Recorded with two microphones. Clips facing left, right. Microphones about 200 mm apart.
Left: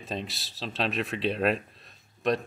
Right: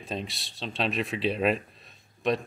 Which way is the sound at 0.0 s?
Centre (ahead or behind).